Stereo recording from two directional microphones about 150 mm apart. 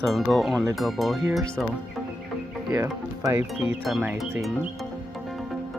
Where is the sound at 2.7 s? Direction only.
20° right (ahead or behind).